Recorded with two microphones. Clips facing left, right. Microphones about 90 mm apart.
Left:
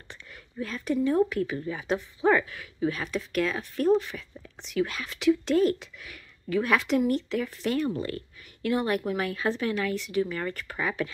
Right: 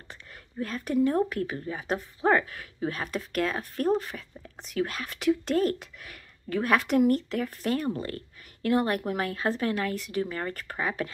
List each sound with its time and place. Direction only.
0.1 s speech: 45° right (ahead or behind)